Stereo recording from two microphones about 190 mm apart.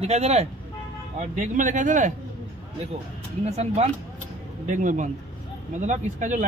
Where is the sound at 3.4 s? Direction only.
35° right (ahead or behind).